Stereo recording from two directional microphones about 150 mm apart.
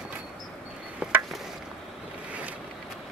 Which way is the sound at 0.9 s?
10° right (ahead or behind).